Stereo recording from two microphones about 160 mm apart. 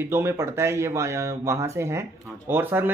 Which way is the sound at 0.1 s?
15° right (ahead or behind).